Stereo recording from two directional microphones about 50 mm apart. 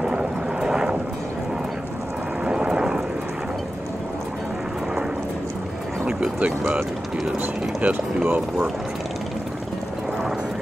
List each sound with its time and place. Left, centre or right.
0.0 s vehicle: centre
2.4 s a sound: centre
6.0 s vehicle: centre
7.8 s speech: right